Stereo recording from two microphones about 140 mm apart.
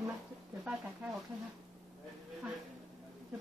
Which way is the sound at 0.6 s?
5° right (ahead or behind).